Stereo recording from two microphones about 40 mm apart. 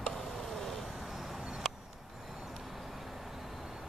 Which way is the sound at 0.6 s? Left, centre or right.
Centre.